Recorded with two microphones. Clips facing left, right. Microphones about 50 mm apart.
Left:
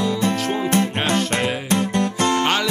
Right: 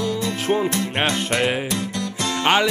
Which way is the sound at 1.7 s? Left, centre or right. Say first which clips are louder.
Left 6 dB; left.